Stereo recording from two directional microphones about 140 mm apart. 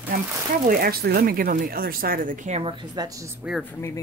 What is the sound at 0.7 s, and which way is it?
Speech, 90° right.